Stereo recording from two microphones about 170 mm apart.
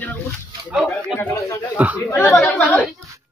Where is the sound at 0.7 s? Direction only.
Centre (ahead or behind).